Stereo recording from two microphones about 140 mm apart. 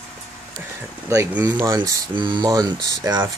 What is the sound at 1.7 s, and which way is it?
Speech, 30° right (ahead or behind).